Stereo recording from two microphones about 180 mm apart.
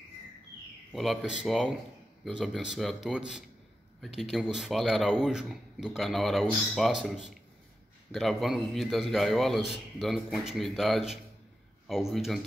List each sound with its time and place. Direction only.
0.9 s speech: centre (ahead or behind)